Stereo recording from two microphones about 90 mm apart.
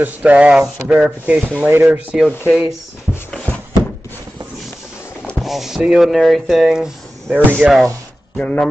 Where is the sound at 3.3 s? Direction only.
15° left (ahead or behind).